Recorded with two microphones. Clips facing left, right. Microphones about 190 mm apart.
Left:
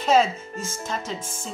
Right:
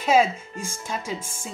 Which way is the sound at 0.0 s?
10° right (ahead or behind).